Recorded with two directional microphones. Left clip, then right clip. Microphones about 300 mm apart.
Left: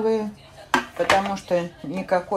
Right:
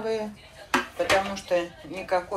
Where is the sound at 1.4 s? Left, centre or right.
Left.